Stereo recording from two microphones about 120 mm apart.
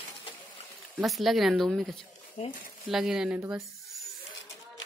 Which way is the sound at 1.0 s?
Centre (ahead or behind).